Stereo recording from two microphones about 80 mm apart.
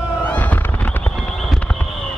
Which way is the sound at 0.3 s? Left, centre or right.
Centre.